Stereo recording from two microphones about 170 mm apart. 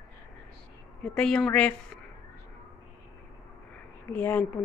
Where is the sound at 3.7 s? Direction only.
10° left (ahead or behind).